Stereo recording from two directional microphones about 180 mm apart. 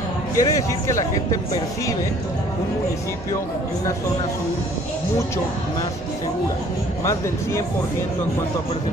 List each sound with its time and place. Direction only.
0.4 s speech: 15° left (ahead or behind)